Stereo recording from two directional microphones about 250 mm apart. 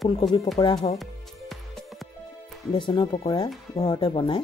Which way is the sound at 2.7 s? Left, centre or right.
Centre.